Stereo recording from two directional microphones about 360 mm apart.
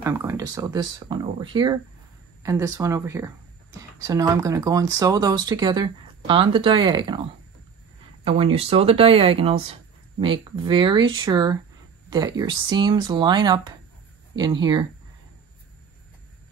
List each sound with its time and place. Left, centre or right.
0.0 s speech: centre
8.2 s speech: centre